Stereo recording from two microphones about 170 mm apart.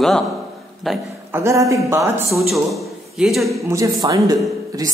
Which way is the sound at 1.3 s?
15° right (ahead or behind).